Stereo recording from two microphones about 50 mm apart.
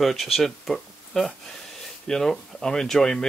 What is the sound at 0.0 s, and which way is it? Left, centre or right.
Speech, centre.